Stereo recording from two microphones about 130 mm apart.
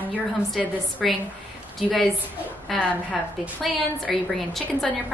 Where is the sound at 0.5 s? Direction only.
5° left (ahead or behind).